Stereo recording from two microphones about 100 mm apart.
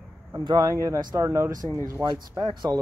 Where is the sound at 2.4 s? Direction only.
45° right (ahead or behind).